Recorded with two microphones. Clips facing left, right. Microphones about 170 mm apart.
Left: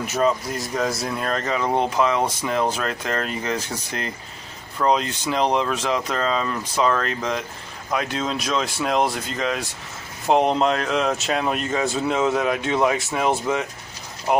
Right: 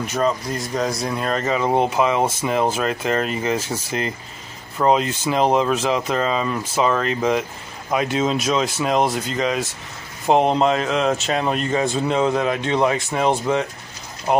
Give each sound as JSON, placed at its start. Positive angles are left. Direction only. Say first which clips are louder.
{"t": 0.0, "sound": "speech", "louder": "even", "side_deg": 5}
{"t": 4.8, "sound": "speech", "louder": "right 3 dB", "side_deg": -5}